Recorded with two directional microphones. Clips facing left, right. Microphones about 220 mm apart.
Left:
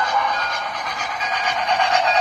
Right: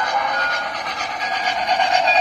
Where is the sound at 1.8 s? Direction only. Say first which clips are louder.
Right 1 dB; 35° right (ahead or behind).